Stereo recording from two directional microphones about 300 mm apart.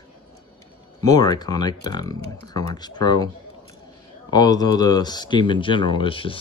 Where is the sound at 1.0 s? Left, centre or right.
Centre.